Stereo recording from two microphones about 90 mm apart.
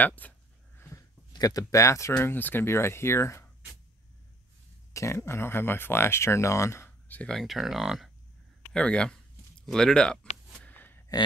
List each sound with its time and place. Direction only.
0.0 s speech: 20° left (ahead or behind)
0.7 s a sound: 30° left (ahead or behind)
1.3 s speech: 45° left (ahead or behind)
2.2 s speech: 25° left (ahead or behind)
4.9 s speech: 30° left (ahead or behind)
7.2 s speech: 10° left (ahead or behind)
7.4 s speech: 5° right (ahead or behind)
8.7 s speech: 10° left (ahead or behind)
10.6 s a sound: 20° left (ahead or behind)